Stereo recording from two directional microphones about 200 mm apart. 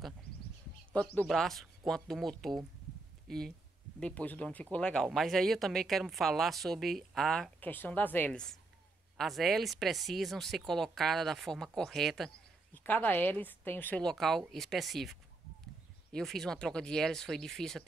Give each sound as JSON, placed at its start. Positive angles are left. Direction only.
{"t": 0.9, "sound": "speech", "side_deg": 5}